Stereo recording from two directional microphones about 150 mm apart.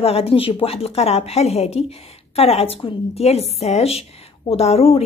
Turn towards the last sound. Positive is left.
turn(degrees=40)  # may be behind; listen again after turning